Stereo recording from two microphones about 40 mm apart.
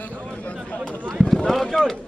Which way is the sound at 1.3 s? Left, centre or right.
Centre.